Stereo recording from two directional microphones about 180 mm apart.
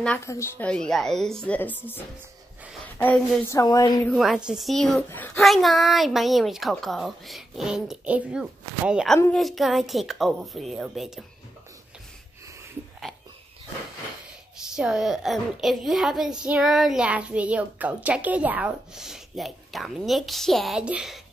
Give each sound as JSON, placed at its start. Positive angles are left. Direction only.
{"t": 0.0, "sound": "a woman's voice", "side_deg": 10}
{"t": 4.1, "sound": "a child's voice", "side_deg": 0}
{"t": 13.1, "sound": "a sound", "side_deg": 0}
{"t": 14.8, "sound": "a child's voice", "side_deg": -5}